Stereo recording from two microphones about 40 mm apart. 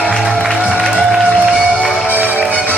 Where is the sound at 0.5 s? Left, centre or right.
Right.